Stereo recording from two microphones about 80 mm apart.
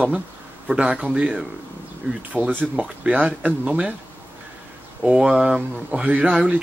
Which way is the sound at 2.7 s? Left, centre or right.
Centre.